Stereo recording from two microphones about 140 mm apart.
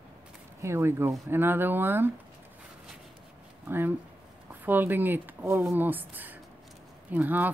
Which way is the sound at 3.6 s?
15° right (ahead or behind).